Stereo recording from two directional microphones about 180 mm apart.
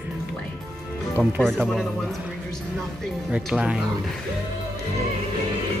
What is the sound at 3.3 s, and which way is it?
Speech, 5° right (ahead or behind).